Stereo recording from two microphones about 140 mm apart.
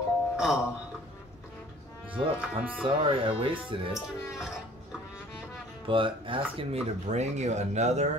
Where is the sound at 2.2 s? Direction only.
40° right (ahead or behind).